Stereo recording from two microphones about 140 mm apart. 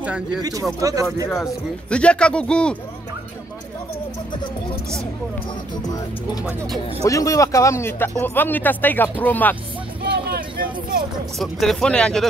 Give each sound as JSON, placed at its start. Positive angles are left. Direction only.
{"t": 0.0, "sound": "speech", "side_deg": -10}
{"t": 0.4, "sound": "speech", "side_deg": -25}
{"t": 1.3, "sound": "speech", "side_deg": 5}
{"t": 7.1, "sound": "speech", "side_deg": 25}
{"t": 10.2, "sound": "hubbub", "side_deg": -90}
{"t": 11.3, "sound": "speech", "side_deg": 0}